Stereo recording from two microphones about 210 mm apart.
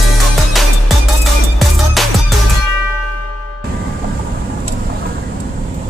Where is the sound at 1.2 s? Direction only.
Centre (ahead or behind).